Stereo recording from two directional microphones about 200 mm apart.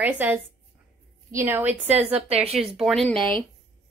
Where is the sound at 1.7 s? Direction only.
30° right (ahead or behind).